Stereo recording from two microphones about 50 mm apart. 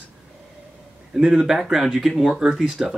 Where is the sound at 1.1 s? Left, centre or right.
Centre.